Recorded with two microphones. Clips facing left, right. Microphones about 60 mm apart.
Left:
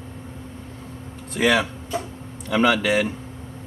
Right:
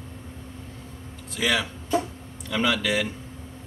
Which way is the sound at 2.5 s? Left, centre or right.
Left.